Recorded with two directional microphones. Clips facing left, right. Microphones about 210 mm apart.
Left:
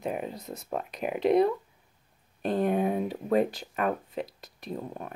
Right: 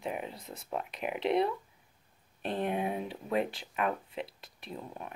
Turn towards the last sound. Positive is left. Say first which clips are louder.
# left 6 dB
turn(degrees=40)  # may be behind; listen again after turning